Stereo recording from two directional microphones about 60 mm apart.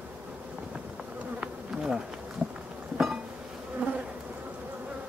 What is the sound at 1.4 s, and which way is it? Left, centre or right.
Bee, centre.